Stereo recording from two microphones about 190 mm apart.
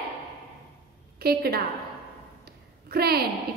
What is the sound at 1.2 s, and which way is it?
Speech, 55° right (ahead or behind).